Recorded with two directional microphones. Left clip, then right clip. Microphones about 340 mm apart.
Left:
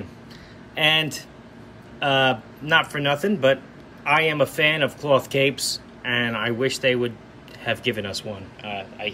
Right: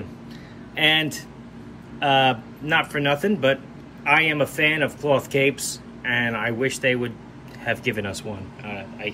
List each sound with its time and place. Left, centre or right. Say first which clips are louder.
0.7 s speech: even; centre